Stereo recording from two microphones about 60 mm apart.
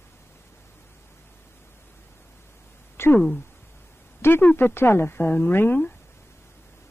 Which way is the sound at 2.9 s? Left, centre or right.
Left.